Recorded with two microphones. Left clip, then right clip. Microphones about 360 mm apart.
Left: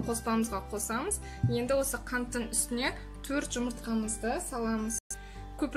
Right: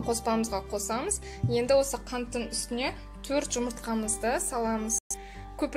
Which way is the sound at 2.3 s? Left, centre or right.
Centre.